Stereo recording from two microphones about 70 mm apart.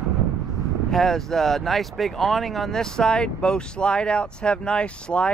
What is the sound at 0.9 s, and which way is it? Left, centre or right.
Speech, centre.